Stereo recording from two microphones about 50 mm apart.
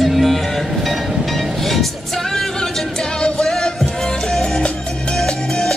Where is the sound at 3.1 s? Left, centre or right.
Centre.